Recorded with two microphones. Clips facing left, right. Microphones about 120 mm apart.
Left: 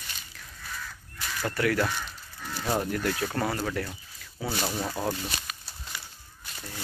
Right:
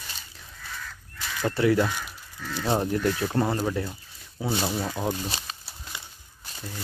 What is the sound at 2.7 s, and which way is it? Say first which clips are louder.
Speech: right 3 dB; 25° right (ahead or behind).